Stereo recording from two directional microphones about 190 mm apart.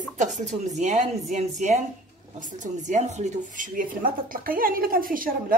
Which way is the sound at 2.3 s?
40° right (ahead or behind).